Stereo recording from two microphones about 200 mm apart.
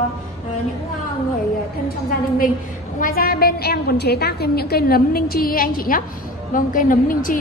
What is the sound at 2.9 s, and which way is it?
A woman's voice, 45° left (ahead or behind).